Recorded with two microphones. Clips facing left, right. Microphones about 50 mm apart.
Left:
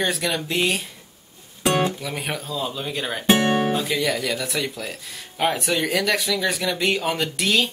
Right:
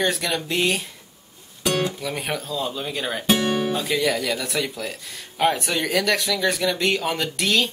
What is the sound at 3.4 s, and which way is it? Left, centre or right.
Guitar, left.